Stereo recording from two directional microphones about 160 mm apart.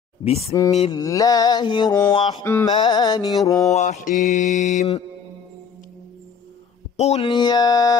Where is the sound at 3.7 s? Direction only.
45° left (ahead or behind).